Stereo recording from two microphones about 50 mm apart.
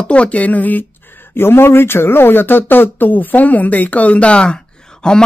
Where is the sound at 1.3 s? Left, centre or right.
Left.